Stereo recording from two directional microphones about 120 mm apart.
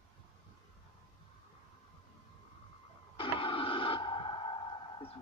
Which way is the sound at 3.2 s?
50° left (ahead or behind).